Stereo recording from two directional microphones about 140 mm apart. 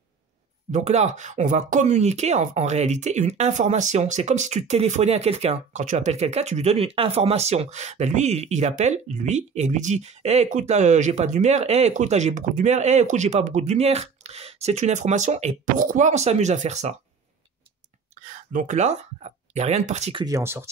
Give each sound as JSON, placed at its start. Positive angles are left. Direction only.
{"t": 0.7, "sound": "speech", "side_deg": -55}
{"t": 18.2, "sound": "speech", "side_deg": -65}
{"t": 20.2, "sound": "speech", "side_deg": -25}